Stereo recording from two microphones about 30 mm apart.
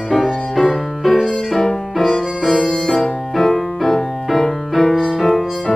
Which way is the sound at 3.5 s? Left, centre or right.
Centre.